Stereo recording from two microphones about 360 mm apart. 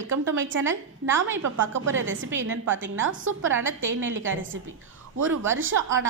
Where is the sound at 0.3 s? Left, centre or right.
Right.